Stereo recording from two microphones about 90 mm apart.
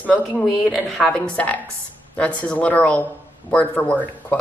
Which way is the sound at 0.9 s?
10° left (ahead or behind).